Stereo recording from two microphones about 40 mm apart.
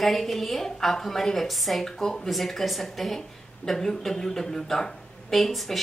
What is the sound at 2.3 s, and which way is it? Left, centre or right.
A woman's voice, centre.